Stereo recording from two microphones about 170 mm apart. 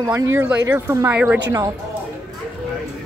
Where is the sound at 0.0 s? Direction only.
15° right (ahead or behind).